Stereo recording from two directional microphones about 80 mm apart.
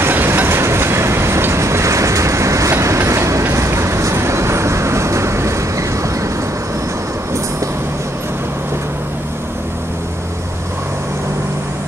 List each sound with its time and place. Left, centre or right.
0.0 s train: right